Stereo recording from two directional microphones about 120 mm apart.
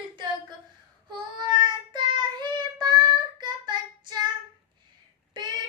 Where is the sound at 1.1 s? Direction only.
40° right (ahead or behind).